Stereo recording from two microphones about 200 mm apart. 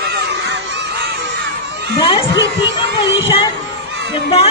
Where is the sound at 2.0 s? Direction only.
25° left (ahead or behind).